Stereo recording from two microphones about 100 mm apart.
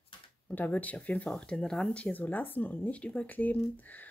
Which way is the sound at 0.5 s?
15° left (ahead or behind).